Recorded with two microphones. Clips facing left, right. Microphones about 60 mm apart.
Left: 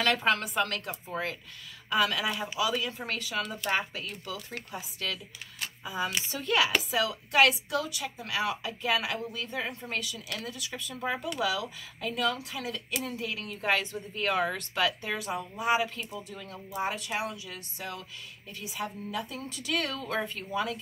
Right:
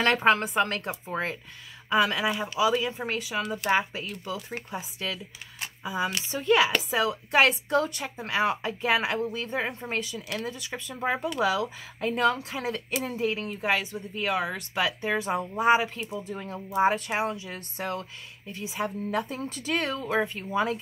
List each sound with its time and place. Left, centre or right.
0.0 s speech: right
13.6 s speech: centre
14.8 s speech: centre
17.7 s speech: right
18.5 s speech: right
19.0 s speech: right
19.3 s speech: right